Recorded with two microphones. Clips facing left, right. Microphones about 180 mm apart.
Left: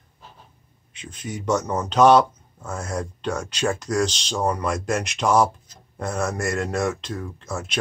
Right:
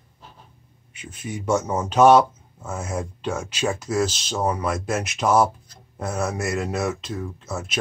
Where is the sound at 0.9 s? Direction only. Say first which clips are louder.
Even; 5° right (ahead or behind).